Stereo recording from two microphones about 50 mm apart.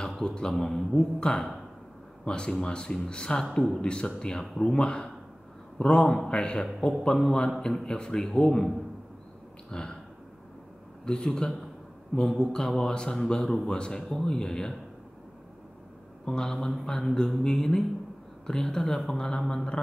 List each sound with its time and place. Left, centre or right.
0.2 s a man's voice: centre
9.7 s a sound: centre
11.1 s a man's voice: centre
16.3 s a man's voice: centre